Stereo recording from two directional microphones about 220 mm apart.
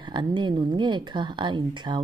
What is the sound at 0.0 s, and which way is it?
Speech, 20° right (ahead or behind).